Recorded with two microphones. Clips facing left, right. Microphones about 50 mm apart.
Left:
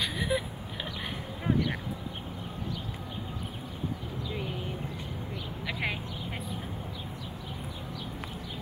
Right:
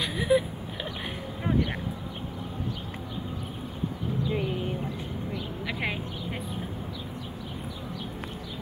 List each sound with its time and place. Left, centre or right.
0.0 s vehicle: centre
4.2 s a sound: right
5.7 s vehicle: centre